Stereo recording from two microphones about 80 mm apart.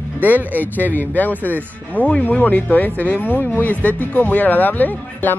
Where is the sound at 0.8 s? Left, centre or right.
Left.